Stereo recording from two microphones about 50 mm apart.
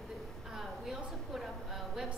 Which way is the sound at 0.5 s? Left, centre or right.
Centre.